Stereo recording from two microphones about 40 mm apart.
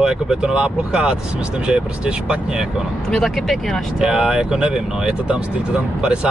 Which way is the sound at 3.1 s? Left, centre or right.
Centre.